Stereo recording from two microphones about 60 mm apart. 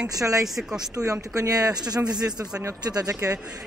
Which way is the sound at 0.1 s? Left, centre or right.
Right.